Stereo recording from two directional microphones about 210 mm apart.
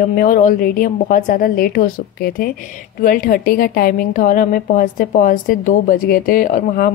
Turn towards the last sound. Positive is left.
turn(degrees=40)  # may be behind; listen again after turning